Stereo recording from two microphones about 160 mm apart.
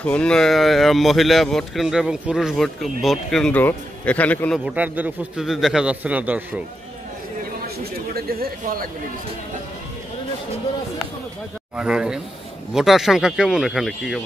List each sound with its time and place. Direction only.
0.0 s speech: 5° left (ahead or behind)
4.6 s a man's voice: 10° right (ahead or behind)
7.6 s a sound: 70° right (ahead or behind)
11.7 s speech: 5° right (ahead or behind)